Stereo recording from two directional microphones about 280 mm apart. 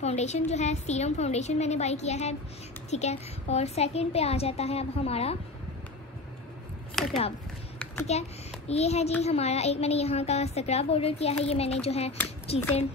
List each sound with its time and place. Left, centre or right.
0.0 s a child's voice: left
7.0 s speech: centre
7.8 s a sound: centre
8.1 s a child's voice: left